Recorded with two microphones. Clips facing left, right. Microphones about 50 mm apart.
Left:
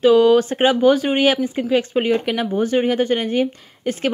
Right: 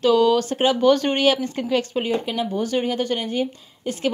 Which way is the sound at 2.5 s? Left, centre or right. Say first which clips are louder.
Left 6 dB; left.